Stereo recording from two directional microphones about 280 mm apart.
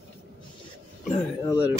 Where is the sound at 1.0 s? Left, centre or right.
Left.